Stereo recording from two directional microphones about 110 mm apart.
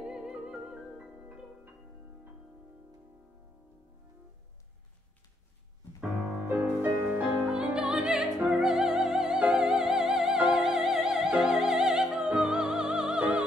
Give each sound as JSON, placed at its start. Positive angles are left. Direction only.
{"t": 0.0, "sound": "music", "side_deg": -5}
{"t": 5.9, "sound": "music", "side_deg": -15}
{"t": 7.4, "sound": "music", "side_deg": -5}